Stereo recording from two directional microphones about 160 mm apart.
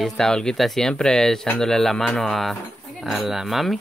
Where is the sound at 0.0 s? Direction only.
5° left (ahead or behind).